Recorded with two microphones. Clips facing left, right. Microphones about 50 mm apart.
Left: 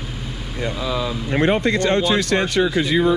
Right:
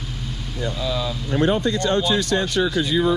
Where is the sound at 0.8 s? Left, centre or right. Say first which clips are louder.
Left 2 dB; centre.